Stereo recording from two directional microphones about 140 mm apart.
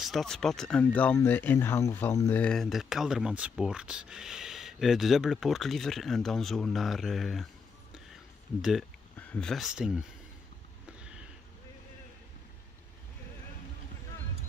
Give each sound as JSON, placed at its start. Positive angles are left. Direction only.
{"t": 0.0, "sound": "speech", "side_deg": 0}
{"t": 2.4, "sound": "speech", "side_deg": 5}
{"t": 8.5, "sound": "speech", "side_deg": -5}
{"t": 10.9, "sound": "a sound", "side_deg": -5}